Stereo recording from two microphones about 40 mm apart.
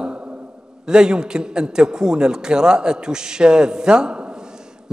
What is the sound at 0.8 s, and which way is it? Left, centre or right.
A man's voice, centre.